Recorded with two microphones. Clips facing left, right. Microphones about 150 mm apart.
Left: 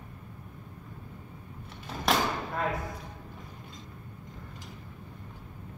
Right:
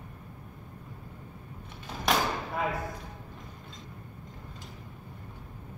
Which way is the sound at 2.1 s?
10° right (ahead or behind).